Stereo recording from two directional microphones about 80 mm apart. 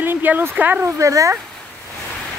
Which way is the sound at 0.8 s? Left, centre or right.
Right.